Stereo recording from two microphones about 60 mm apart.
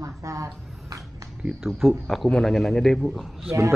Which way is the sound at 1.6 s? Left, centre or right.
Centre.